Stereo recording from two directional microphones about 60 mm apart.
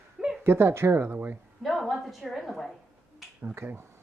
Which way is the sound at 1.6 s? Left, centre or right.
Centre.